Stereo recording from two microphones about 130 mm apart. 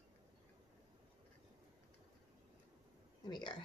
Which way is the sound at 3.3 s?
35° left (ahead or behind).